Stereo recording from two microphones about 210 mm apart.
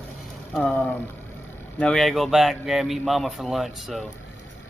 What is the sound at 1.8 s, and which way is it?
Speech, 5° left (ahead or behind).